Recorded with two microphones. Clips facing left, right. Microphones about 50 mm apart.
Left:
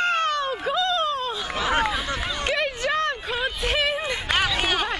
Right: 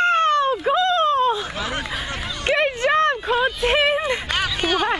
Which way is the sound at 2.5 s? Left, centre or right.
Right.